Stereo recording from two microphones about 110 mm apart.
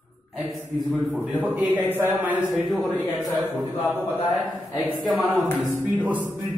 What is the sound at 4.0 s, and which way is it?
Speech, 20° left (ahead or behind).